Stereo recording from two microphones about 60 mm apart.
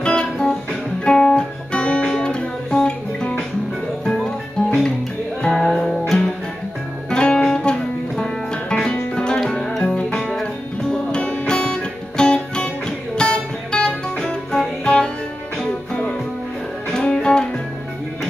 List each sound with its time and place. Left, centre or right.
0.0 s music: centre
2.0 s guitar: centre
4.0 s music: centre
10.1 s music: centre
10.4 s music: centre